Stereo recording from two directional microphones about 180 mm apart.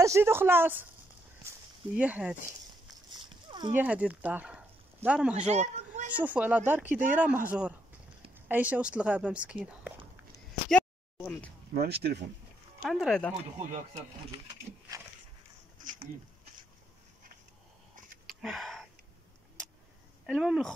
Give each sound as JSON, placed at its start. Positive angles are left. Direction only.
{"t": 0.0, "sound": "speech", "side_deg": -15}
{"t": 2.0, "sound": "speech", "side_deg": -10}
{"t": 3.1, "sound": "dog", "side_deg": -25}
{"t": 3.7, "sound": "speech", "side_deg": -10}
{"t": 5.3, "sound": "speech", "side_deg": -40}
{"t": 6.1, "sound": "speech", "side_deg": -10}
{"t": 11.1, "sound": "speech", "side_deg": 10}
{"t": 11.7, "sound": "speech", "side_deg": -60}
{"t": 12.8, "sound": "speech", "side_deg": 0}
{"t": 18.3, "sound": "a sound", "side_deg": 0}
{"t": 20.2, "sound": "speech", "side_deg": -5}